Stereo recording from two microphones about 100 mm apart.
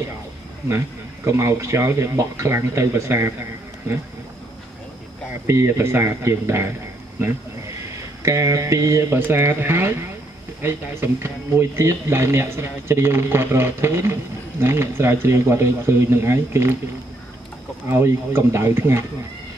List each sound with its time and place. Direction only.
0.7 s speech: 30° right (ahead or behind)
5.5 s speech: 25° right (ahead or behind)
8.2 s speech: 30° right (ahead or behind)
17.8 s speech: 25° right (ahead or behind)